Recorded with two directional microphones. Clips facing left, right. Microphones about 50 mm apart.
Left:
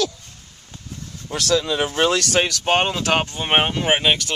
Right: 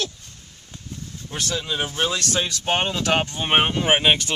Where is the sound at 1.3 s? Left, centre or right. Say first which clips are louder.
Left 7 dB; left.